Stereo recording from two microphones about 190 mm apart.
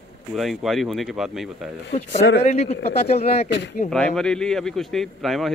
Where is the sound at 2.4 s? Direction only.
35° left (ahead or behind).